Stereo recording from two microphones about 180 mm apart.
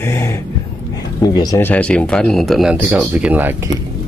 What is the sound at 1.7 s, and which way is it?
Speech, 5° left (ahead or behind).